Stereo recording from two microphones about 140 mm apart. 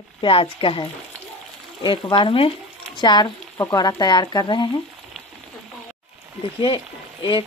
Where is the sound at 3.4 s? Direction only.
10° left (ahead or behind).